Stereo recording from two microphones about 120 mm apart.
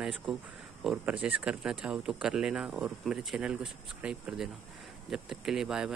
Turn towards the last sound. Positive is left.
turn(degrees=-5)  # may be behind; listen again after turning